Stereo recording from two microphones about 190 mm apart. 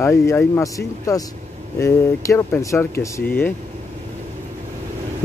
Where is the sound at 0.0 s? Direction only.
15° left (ahead or behind).